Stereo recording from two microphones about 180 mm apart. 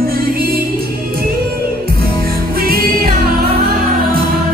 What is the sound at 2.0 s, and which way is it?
Music, 55° right (ahead or behind).